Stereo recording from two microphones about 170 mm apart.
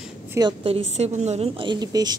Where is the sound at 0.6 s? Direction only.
40° right (ahead or behind).